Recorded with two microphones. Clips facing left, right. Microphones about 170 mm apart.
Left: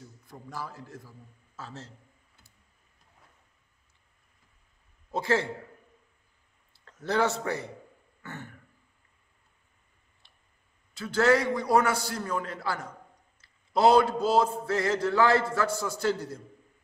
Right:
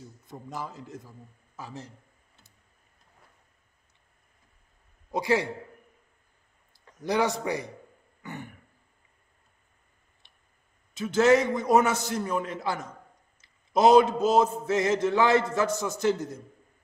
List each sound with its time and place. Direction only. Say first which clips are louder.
0.3 s a man's voice: right 2 dB; 20° right (ahead or behind)
5.1 s a man's voice: right 2 dB; 15° right (ahead or behind)
6.7 s a man's voice: right 1 dB; 15° right (ahead or behind)
8.2 s throat clearing: right 3 dB; 15° right (ahead or behind)
10.2 s tick: left 1 dB; 20° right (ahead or behind)
11.0 s a man's voice: right 3 dB; 20° right (ahead or behind)